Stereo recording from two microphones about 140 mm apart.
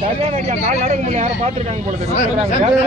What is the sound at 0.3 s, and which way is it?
Speech, 55° right (ahead or behind).